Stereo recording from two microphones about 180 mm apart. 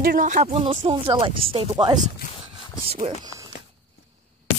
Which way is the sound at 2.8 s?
35° right (ahead or behind).